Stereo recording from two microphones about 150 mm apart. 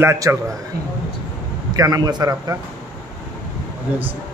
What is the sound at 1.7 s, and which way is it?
Speech, 25° right (ahead or behind).